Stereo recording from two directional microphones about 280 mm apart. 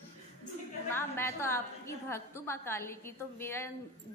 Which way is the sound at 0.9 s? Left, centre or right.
Centre.